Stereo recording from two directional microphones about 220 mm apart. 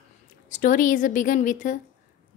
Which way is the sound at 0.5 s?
35° left (ahead or behind).